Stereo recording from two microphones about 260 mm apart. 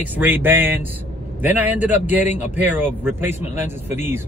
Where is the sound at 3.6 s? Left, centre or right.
Left.